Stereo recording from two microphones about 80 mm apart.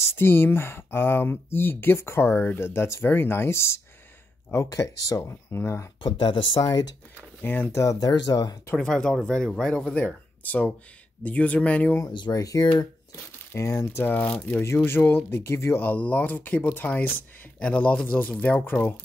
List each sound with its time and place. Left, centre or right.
0.2 s speech: left
4.6 s speech: left
6.0 s speech: left
6.6 s speech: left
7.4 s speech: left
7.7 s speech: left
8.1 s speech: left
8.7 s speech: centre
12.1 s speech: left
12.4 s speech: left
13.1 s speech: left